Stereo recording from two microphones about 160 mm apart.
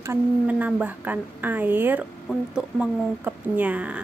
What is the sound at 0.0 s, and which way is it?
A woman's voice, 15° right (ahead or behind).